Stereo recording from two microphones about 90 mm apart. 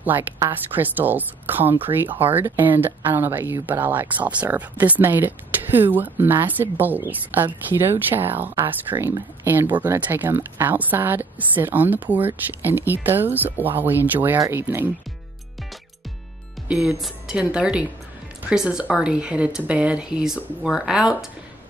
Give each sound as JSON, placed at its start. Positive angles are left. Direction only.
{"t": 0.0, "sound": "speech", "side_deg": -20}
{"t": 16.7, "sound": "speech", "side_deg": -5}